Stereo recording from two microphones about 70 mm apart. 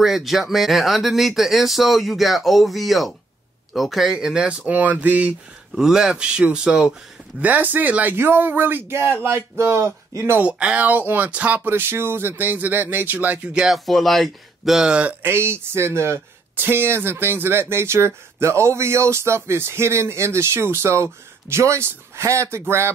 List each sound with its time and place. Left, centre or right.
0.0 s speech: centre; by 5.3 s right
5.8 s speech: centre
7.3 s speech: right
10.4 s speech: centre
13.7 s speech: centre
15.2 s speech: right